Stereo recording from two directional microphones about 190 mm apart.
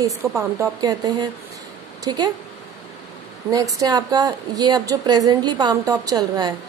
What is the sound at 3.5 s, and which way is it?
A woman's voice, 20° right (ahead or behind).